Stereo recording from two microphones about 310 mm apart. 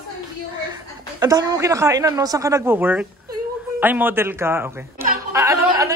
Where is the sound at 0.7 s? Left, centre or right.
Centre.